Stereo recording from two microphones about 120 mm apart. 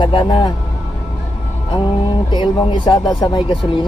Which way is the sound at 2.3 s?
40° left (ahead or behind).